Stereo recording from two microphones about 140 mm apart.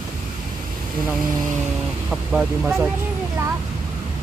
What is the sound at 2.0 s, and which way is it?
Speech, 5° right (ahead or behind).